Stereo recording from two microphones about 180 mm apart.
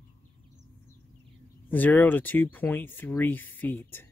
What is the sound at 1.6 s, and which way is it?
Speech, 10° left (ahead or behind).